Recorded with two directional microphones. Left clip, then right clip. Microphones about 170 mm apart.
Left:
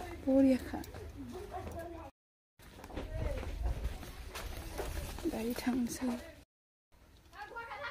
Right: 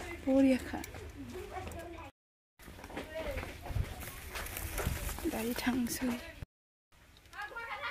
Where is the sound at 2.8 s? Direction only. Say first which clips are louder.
Right 2 dB; 30° right (ahead or behind).